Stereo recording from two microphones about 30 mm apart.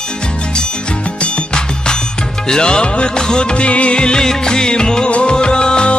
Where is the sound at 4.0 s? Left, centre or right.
Left.